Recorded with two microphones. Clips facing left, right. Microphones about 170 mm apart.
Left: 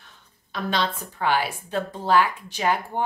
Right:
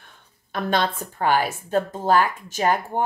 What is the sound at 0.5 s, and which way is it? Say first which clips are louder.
Speech: right 3 dB; 50° right (ahead or behind).